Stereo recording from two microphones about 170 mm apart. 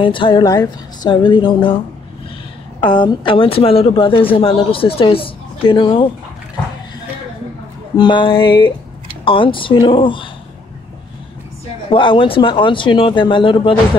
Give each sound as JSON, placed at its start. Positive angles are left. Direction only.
{"t": 0.0, "sound": "speech", "side_deg": 30}
{"t": 2.8, "sound": "speech", "side_deg": 30}
{"t": 8.0, "sound": "speech", "side_deg": 30}
{"t": 11.9, "sound": "speech", "side_deg": 30}